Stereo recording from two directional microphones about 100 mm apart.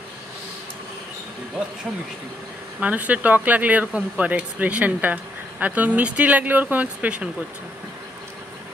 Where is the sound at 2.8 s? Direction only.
15° right (ahead or behind).